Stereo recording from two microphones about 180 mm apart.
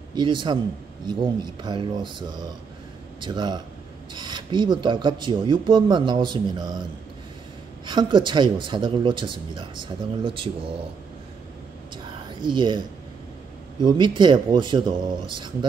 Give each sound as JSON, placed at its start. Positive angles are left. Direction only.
{"t": 0.1, "sound": "speech", "side_deg": -25}
{"t": 7.8, "sound": "speech", "side_deg": -25}
{"t": 12.3, "sound": "speech", "side_deg": -25}
{"t": 13.8, "sound": "speech", "side_deg": -25}